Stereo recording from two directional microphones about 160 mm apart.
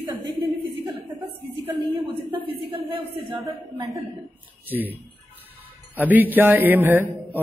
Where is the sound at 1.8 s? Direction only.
20° right (ahead or behind).